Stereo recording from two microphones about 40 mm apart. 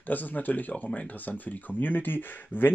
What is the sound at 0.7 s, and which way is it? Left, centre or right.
Speech, left.